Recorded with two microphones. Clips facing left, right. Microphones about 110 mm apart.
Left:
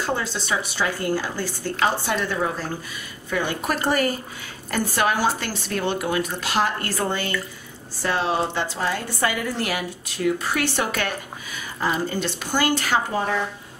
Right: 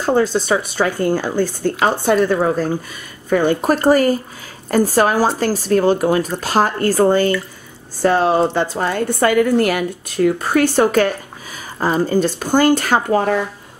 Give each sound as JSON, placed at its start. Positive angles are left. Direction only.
{"t": 0.0, "sound": "a woman's voice", "side_deg": -45}